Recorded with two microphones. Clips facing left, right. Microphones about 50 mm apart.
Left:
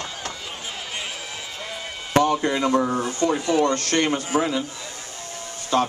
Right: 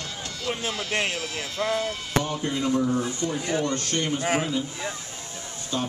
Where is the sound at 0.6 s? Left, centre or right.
Right.